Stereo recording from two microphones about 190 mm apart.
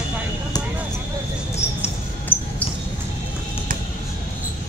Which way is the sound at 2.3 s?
10° left (ahead or behind).